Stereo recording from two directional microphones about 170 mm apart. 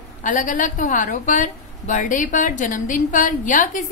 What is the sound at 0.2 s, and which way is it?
A woman's voice, 50° left (ahead or behind).